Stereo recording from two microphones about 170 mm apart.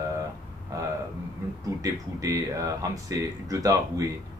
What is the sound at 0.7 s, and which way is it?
Speech, 20° right (ahead or behind).